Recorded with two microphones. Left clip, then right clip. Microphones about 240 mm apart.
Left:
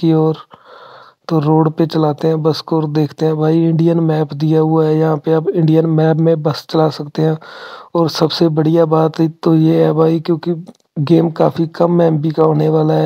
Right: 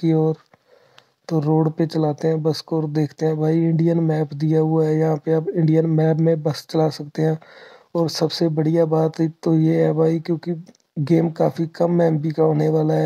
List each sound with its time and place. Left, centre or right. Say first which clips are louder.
0.0 s speech: left 6 dB; left
3.5 s speech: left 6 dB; centre
4.3 s speech: left 6 dB; left